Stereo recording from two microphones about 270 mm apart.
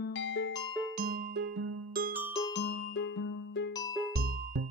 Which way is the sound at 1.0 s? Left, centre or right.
Right.